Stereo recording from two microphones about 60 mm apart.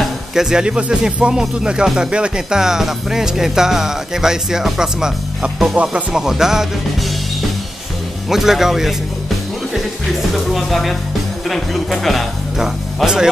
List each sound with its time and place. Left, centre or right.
0.0 s speech: centre
8.3 s speech: centre
10.3 s speech: centre
12.5 s speech: centre